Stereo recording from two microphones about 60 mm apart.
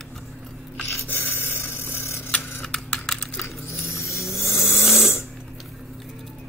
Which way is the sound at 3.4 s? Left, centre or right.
Left.